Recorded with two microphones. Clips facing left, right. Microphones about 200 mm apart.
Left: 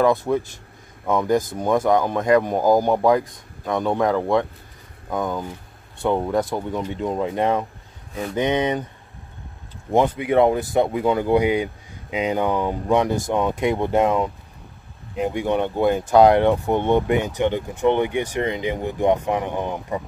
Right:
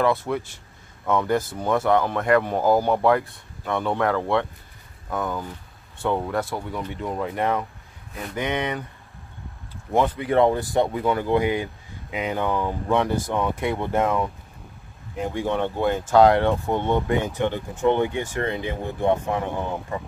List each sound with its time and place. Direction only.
0.0 s speech: 15° left (ahead or behind)
9.8 s speech: 15° left (ahead or behind)